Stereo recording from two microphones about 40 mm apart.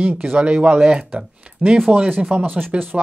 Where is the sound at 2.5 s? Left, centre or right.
Right.